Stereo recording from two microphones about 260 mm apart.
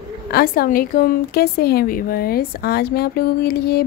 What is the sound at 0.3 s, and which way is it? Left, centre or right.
A woman's voice, left.